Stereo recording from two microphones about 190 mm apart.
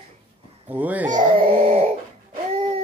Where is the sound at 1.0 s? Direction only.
45° right (ahead or behind).